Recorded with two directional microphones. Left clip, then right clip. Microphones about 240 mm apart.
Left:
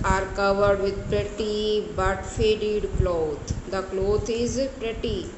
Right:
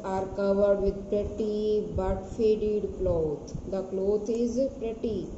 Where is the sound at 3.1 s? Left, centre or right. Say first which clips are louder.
Left 1 dB; centre.